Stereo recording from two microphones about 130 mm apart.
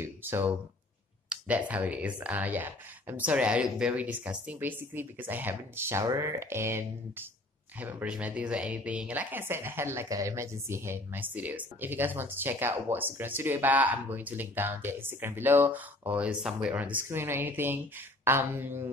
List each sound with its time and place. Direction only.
0.0 s speech: 15° right (ahead or behind)